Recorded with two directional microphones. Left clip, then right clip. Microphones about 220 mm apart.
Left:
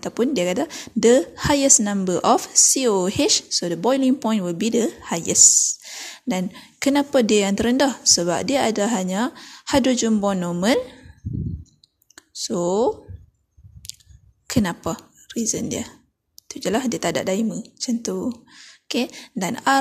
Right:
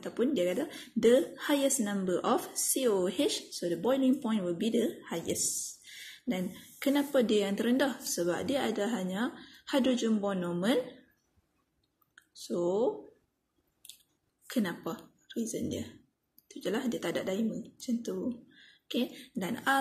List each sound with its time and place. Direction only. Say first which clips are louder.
0.0 s a woman's voice: left 9 dB; 40° left (ahead or behind)
12.2 s speech: left 9 dB; 45° left (ahead or behind)
14.5 s a woman's voice: left 11 dB; 45° left (ahead or behind)